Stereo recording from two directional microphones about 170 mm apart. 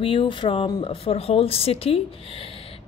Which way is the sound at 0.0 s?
30° left (ahead or behind).